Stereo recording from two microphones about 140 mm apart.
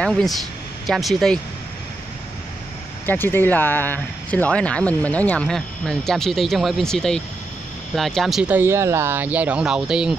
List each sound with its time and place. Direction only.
0.0 s speech: 5° left (ahead or behind)
3.1 s speech: 15° left (ahead or behind); by 10.1 s 5° right (ahead or behind)